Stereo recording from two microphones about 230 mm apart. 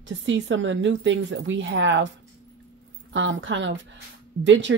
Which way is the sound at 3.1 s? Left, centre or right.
Right.